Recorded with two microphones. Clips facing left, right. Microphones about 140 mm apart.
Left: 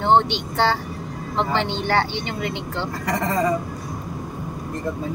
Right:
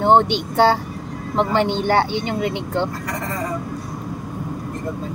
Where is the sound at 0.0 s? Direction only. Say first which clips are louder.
Right 3 dB; 45° right (ahead or behind).